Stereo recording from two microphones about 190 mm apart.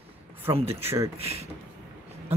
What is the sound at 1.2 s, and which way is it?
Speech, 35° right (ahead or behind).